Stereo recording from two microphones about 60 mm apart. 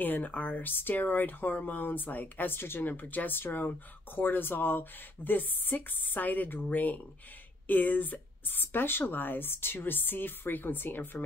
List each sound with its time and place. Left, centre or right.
0.0 s speech: left